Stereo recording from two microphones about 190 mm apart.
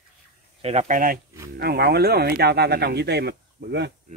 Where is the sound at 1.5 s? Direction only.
55° right (ahead or behind).